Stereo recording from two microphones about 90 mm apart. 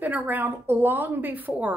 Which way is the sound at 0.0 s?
20° right (ahead or behind).